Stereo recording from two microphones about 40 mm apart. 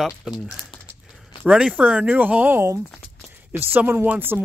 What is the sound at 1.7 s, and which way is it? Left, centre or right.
Speech, right.